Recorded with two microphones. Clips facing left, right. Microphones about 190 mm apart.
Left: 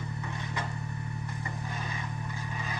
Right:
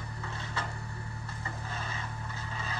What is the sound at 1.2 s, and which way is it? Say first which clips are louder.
Vehicle: left 3 dB; 15° left (ahead or behind).